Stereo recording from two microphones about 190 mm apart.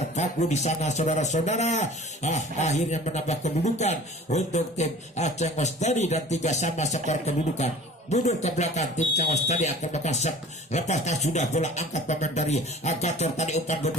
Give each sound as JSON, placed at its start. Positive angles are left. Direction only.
{"t": 0.1, "sound": "a man's voice", "side_deg": 35}